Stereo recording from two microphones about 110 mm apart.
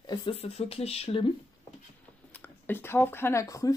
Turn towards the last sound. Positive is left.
turn(degrees=30)  # may be behind; listen again after turning